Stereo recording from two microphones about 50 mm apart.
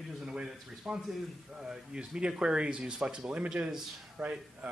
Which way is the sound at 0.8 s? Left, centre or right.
Centre.